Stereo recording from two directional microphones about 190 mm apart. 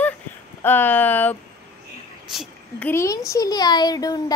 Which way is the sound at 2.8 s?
15° left (ahead or behind).